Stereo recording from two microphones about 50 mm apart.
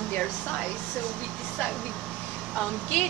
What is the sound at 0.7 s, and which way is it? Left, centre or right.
Speech, centre.